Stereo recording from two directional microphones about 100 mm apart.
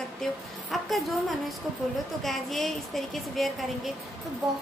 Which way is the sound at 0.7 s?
Centre (ahead or behind).